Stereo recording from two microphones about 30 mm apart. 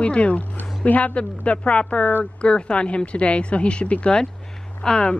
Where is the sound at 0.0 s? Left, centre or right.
Left.